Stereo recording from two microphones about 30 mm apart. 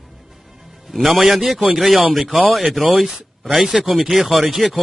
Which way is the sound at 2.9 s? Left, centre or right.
Centre.